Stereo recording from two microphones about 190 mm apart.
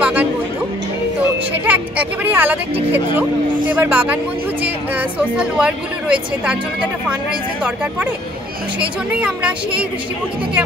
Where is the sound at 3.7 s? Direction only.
10° right (ahead or behind).